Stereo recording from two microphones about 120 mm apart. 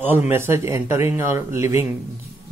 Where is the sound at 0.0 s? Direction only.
15° right (ahead or behind).